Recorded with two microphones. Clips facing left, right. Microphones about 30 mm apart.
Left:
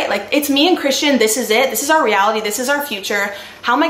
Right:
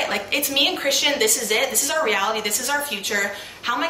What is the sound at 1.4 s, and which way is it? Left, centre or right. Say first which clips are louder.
Speech: left 7 dB; left.